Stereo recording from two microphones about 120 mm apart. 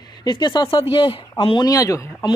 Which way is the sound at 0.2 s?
35° left (ahead or behind).